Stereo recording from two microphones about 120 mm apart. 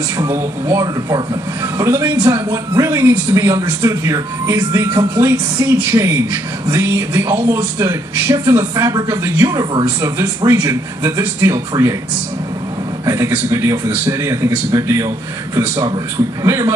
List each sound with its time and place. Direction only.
0.2 s speech: 25° right (ahead or behind)
13.0 s speech: 25° right (ahead or behind)